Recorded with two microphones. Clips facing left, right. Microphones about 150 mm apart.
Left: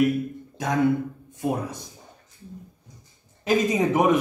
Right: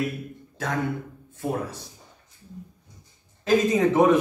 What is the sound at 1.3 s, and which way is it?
Speech, 15° left (ahead or behind).